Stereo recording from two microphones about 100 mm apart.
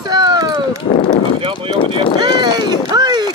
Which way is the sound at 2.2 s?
45° right (ahead or behind).